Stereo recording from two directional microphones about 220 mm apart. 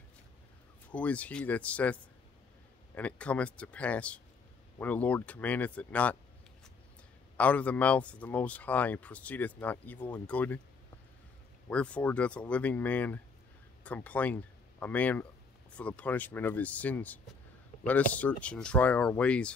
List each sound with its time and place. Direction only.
0.9 s speech: 5° left (ahead or behind)
7.3 s speech: 5° left (ahead or behind)
11.7 s speech: 5° left (ahead or behind)